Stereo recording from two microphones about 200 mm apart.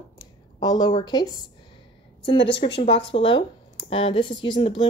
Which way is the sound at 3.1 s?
25° left (ahead or behind).